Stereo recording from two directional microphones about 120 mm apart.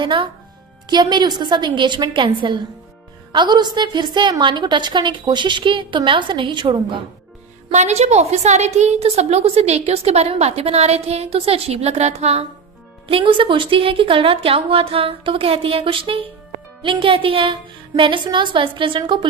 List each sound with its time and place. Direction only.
0.0 s a woman's voice: 45° right (ahead or behind)
7.7 s a woman's voice: 70° right (ahead or behind)
13.1 s a woman's voice: 50° right (ahead or behind)